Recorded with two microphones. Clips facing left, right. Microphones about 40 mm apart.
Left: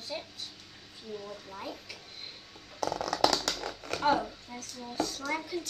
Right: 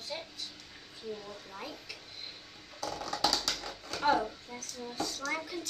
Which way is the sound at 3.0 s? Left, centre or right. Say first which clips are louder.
Left 3 dB; left.